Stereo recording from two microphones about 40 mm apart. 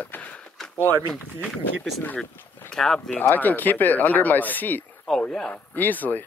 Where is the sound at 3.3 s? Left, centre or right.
Left.